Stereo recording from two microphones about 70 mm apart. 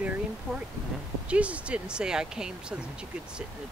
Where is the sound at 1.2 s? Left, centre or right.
Centre.